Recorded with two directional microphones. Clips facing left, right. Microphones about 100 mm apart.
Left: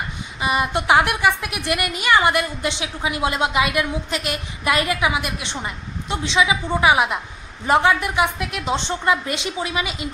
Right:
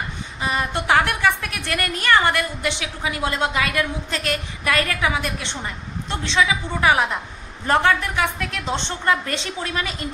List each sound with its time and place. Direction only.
0.4 s a woman's voice: 15° left (ahead or behind)